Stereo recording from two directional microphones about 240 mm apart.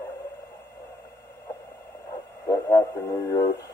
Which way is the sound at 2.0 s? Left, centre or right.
Centre.